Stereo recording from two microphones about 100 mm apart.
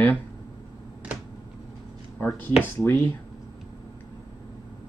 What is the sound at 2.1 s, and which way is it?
Speech, 15° left (ahead or behind).